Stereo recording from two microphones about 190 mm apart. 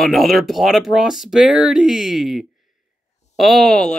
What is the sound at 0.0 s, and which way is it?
Speech, centre (ahead or behind).